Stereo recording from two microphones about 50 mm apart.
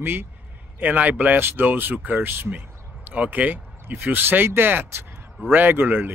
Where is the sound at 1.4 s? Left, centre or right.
Right.